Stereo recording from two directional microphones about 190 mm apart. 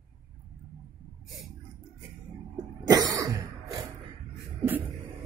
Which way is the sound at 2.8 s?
20° right (ahead or behind).